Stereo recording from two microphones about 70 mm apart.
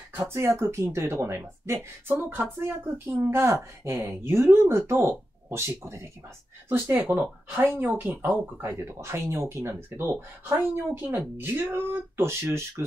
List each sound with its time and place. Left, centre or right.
0.1 s speech: right
3.3 s speech: right